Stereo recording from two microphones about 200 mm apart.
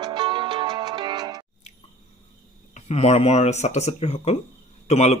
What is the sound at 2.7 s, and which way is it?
Speech, 35° left (ahead or behind).